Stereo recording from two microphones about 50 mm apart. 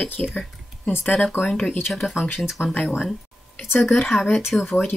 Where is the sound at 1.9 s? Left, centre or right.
Centre.